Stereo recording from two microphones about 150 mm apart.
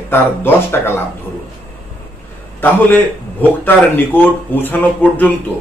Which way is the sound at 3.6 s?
10° left (ahead or behind).